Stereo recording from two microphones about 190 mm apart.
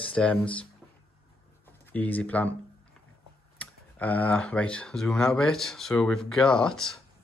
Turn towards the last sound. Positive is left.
turn(degrees=5)  # may be behind; listen again after turning